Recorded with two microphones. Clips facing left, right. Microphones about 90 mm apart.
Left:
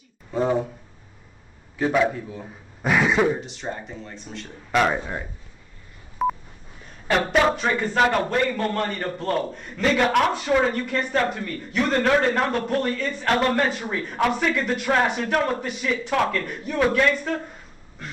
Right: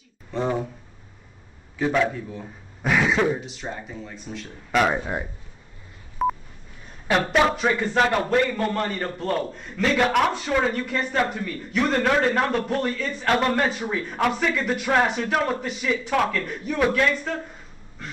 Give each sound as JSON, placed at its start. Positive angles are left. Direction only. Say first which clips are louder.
{"t": 0.3, "sound": "a sound", "louder": "left 3 dB", "side_deg": 10}
{"t": 1.8, "sound": "a man's voice", "louder": "left 1 dB", "side_deg": 5}
{"t": 6.2, "sound": "telephone dialing", "louder": "even", "side_deg": 0}
{"t": 7.1, "sound": "a man's voice", "louder": "even", "side_deg": 0}